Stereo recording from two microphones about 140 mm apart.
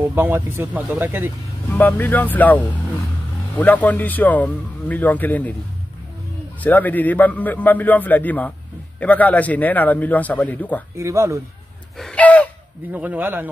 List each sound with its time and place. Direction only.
0.0 s speech: 15° right (ahead or behind)
1.7 s a man's voice: 10° left (ahead or behind)
6.6 s a man's voice: 10° left (ahead or behind)
11.0 s speech: 20° right (ahead or behind)
12.0 s gasp: 10° left (ahead or behind)
12.9 s speech: 10° right (ahead or behind)